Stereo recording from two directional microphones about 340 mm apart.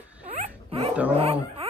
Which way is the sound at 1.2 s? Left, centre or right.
Centre.